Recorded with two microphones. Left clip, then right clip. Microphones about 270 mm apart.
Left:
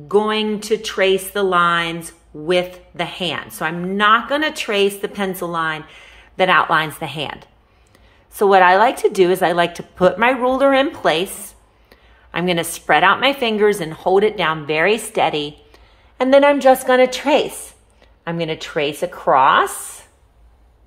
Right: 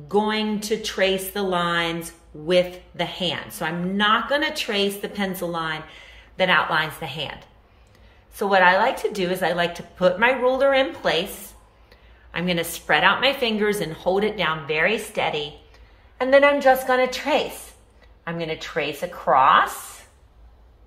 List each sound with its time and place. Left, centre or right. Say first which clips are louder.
0.0 s a woman's voice: left 5 dB; centre